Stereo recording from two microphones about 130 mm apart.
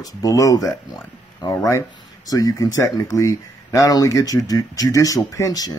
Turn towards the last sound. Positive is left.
turn(degrees=30)  # may be behind; listen again after turning